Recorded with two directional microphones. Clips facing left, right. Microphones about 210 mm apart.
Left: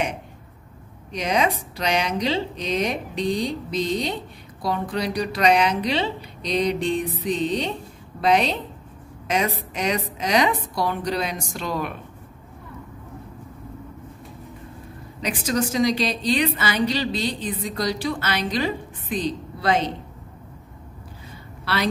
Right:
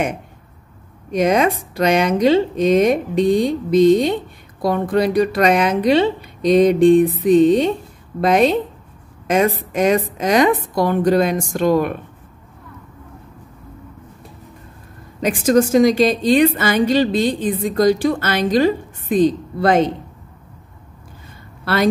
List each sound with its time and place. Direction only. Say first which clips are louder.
1.1 s speech: right 7 dB; 50° right (ahead or behind)
15.1 s speech: right 9 dB; 50° right (ahead or behind)
21.7 s speech: right 7 dB; 50° right (ahead or behind)